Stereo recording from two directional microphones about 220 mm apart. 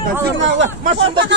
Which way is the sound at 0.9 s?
25° right (ahead or behind).